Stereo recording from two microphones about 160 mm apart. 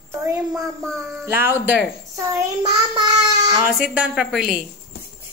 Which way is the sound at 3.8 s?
5° right (ahead or behind).